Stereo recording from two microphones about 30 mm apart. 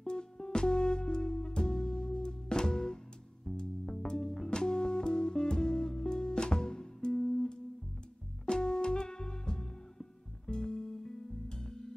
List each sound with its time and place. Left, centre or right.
0.0 s music: left